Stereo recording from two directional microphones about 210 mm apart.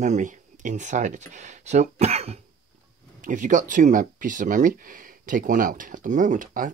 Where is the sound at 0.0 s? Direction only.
35° right (ahead or behind).